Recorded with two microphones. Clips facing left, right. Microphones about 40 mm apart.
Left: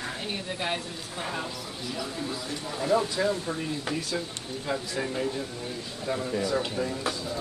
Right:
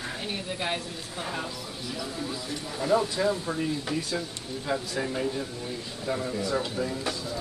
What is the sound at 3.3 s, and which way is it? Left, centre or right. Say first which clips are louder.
Speech: right 1 dB; centre.